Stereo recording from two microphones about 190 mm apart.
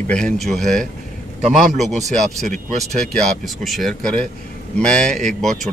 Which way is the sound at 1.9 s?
35° right (ahead or behind).